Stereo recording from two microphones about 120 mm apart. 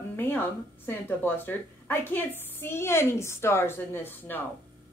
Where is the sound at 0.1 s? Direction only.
20° left (ahead or behind).